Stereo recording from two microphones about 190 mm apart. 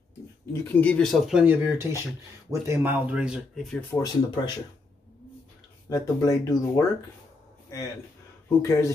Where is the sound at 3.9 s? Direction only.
20° left (ahead or behind).